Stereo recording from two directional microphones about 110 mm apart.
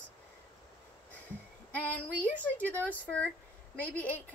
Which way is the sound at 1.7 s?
15° left (ahead or behind).